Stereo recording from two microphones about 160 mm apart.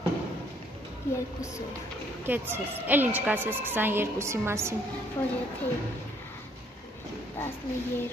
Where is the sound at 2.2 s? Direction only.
15° right (ahead or behind).